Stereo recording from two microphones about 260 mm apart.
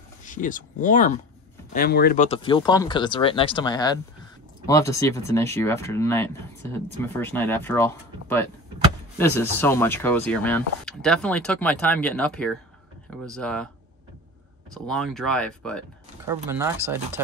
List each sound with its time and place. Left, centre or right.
0.2 s speech: left
2.2 s speech: left; by 13.7 s centre
14.7 s speech: centre
16.3 s speech: centre